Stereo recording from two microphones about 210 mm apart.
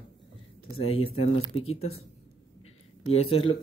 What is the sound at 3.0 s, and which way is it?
Speech, 30° left (ahead or behind).